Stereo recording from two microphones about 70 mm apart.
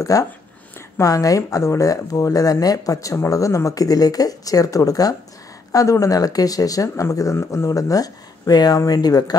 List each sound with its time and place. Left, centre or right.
0.0 s speech: left